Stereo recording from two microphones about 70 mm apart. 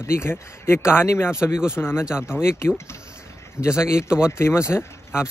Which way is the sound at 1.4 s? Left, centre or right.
Centre.